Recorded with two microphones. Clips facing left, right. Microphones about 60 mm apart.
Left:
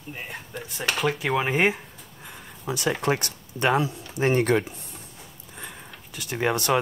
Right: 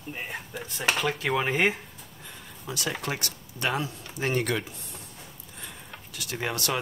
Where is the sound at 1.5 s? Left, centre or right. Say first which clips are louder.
Left 3 dB; centre.